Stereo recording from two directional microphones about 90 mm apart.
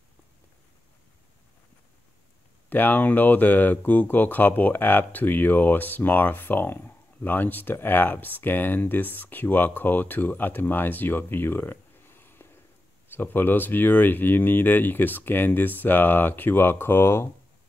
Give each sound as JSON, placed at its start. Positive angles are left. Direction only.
{"t": 2.7, "sound": "speech", "side_deg": 20}